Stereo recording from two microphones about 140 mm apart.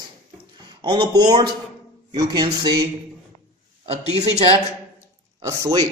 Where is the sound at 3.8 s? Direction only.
45° right (ahead or behind).